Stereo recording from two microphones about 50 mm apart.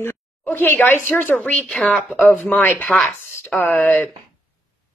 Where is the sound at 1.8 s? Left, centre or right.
Left.